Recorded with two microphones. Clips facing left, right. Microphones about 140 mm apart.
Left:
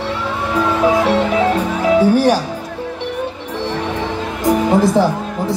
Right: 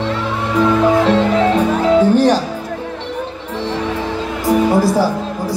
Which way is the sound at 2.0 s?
10° left (ahead or behind).